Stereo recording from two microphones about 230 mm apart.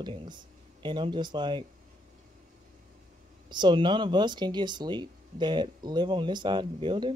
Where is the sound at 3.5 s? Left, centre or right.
Centre.